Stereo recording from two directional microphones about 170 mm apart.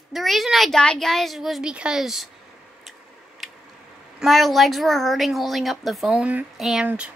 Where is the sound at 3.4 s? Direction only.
Centre (ahead or behind).